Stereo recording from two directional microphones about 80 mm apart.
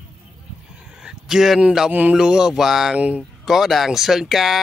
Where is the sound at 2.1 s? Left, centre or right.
Centre.